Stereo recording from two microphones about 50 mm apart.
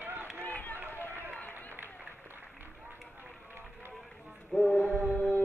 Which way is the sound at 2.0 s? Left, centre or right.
Right.